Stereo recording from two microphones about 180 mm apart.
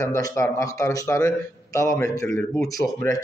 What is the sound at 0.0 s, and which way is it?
A man's voice, 15° left (ahead or behind).